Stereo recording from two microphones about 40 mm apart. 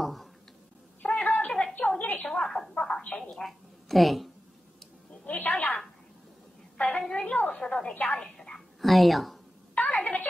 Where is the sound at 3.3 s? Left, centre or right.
Centre.